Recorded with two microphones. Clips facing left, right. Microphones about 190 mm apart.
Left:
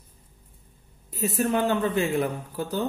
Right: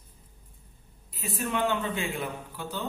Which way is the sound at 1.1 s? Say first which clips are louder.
Left 7 dB; 40° left (ahead or behind).